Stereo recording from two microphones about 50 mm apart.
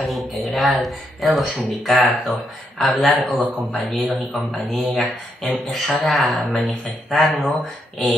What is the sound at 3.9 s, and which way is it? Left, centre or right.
Speech, centre.